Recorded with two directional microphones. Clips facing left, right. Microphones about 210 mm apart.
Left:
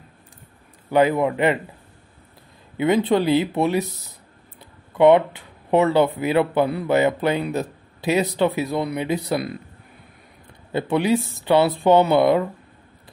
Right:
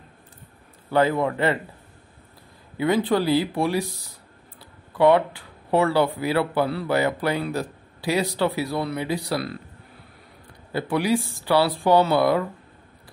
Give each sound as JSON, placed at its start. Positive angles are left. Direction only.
{"t": 0.8, "sound": "a man's voice", "side_deg": 15}
{"t": 2.8, "sound": "speech", "side_deg": 20}
{"t": 4.9, "sound": "speech", "side_deg": 20}
{"t": 10.7, "sound": "speech", "side_deg": 20}